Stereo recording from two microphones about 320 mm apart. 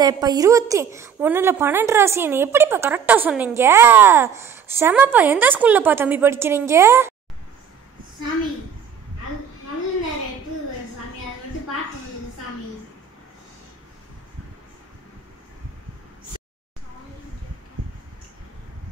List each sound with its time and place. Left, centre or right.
0.0 s a woman's voice: centre